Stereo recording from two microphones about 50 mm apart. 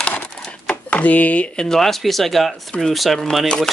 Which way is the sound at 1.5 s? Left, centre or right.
Centre.